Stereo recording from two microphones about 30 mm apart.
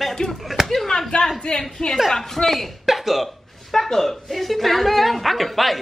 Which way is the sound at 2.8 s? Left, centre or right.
Centre.